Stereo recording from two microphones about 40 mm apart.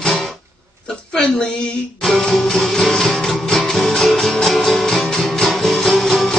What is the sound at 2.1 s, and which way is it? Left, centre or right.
Music, centre.